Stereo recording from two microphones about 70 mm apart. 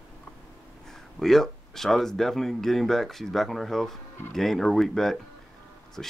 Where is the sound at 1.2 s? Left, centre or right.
Centre.